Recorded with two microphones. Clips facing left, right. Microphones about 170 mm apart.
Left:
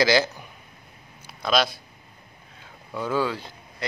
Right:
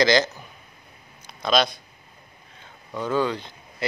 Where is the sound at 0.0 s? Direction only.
10° left (ahead or behind).